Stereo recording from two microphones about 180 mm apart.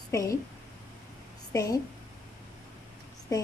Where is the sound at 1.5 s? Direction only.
20° left (ahead or behind).